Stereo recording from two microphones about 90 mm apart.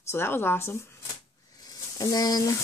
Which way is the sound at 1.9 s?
45° left (ahead or behind).